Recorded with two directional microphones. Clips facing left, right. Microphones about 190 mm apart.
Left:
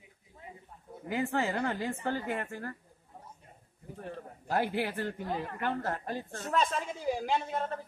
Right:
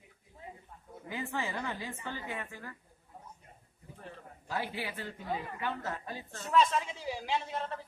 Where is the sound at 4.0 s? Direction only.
50° left (ahead or behind).